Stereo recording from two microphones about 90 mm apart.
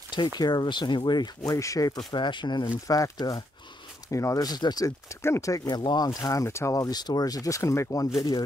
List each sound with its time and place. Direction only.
0.4 s speech: 55° left (ahead or behind)
1.6 s speech: 40° left (ahead or behind); by 2.7 s 60° left (ahead or behind)
2.9 s speech: 40° left (ahead or behind)
5.7 s speech: 55° left (ahead or behind)
6.0 s speech: 35° left (ahead or behind)